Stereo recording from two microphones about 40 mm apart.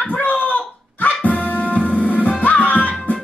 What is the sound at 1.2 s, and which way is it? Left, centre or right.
Music, left.